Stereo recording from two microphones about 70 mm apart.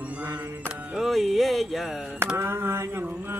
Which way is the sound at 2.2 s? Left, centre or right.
Right.